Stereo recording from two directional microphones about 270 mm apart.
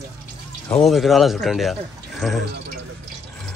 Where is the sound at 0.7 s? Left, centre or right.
Centre.